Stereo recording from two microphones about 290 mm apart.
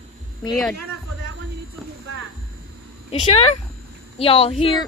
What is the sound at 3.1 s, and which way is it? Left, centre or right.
A woman's voice, left.